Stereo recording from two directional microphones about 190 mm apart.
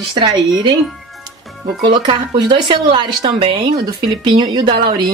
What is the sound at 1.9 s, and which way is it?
Speech, 25° right (ahead or behind).